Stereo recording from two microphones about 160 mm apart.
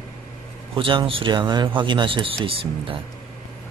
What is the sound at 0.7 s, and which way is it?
Speech, 30° right (ahead or behind).